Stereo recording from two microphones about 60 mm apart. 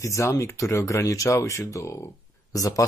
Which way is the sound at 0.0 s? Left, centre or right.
Left.